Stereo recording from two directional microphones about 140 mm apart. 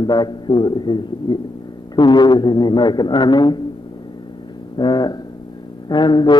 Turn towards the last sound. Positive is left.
turn(degrees=30)  # may be behind; listen again after turning